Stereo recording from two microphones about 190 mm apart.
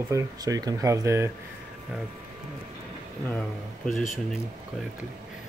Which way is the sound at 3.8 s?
Centre (ahead or behind).